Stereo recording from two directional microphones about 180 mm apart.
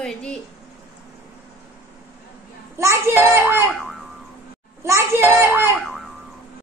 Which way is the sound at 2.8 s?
15° right (ahead or behind).